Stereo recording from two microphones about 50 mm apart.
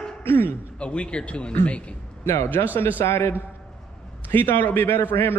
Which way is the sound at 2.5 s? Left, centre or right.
Left.